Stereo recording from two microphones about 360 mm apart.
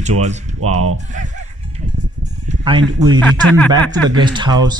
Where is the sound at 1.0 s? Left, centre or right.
Right.